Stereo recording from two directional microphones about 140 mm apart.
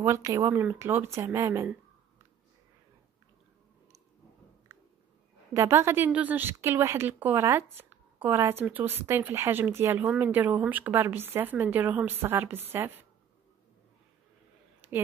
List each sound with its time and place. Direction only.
0.0 s speech: 25° right (ahead or behind)
5.5 s a woman's voice: 20° right (ahead or behind)
14.8 s a sound: 15° right (ahead or behind)